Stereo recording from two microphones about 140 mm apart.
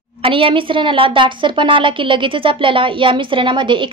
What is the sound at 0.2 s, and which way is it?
Speech, 40° right (ahead or behind).